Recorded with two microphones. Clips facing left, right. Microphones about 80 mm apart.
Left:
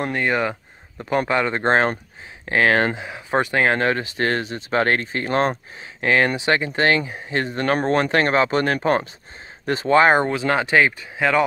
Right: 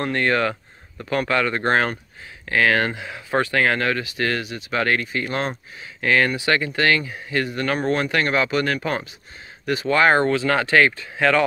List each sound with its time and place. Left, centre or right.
0.0 s speech: centre